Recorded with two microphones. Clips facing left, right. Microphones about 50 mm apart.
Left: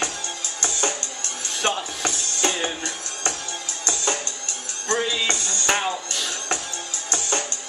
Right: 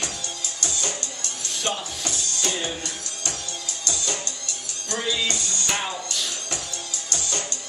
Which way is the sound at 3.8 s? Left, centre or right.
Left.